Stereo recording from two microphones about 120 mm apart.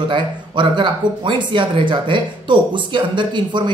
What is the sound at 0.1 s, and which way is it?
Speech, 40° right (ahead or behind).